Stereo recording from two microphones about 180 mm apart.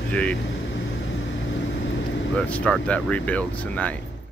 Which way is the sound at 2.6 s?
5° left (ahead or behind).